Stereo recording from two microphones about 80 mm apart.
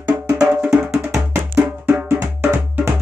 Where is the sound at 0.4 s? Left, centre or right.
Centre.